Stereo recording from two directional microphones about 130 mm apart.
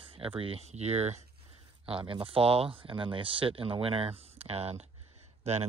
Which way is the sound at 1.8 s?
45° right (ahead or behind).